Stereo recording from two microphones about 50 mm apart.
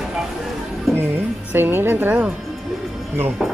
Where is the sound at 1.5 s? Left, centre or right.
Right.